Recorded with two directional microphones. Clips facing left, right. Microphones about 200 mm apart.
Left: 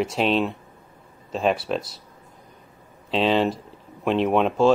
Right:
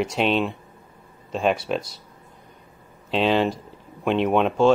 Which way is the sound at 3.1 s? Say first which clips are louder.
Even; centre (ahead or behind).